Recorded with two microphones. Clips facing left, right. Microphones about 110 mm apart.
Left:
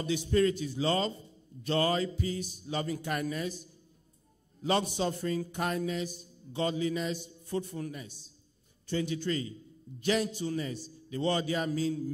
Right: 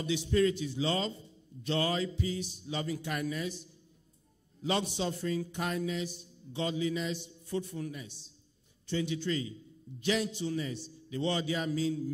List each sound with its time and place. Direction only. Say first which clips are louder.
0.0 s a man's voice: left 1 dB; 45° left (ahead or behind)